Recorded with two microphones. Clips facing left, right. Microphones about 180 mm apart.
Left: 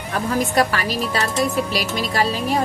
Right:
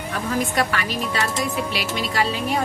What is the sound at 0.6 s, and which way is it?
A woman's voice, 35° left (ahead or behind).